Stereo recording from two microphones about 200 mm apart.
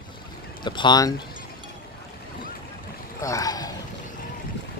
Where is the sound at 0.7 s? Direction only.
20° left (ahead or behind).